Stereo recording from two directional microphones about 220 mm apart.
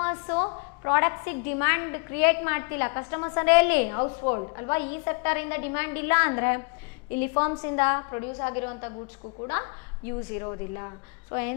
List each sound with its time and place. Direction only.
0.0 s a sound: 10° left (ahead or behind)
0.8 s a woman's voice: 15° left (ahead or behind)
4.0 s a woman's voice: 25° left (ahead or behind)